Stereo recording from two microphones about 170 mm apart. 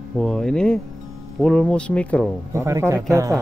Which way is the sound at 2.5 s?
15° right (ahead or behind).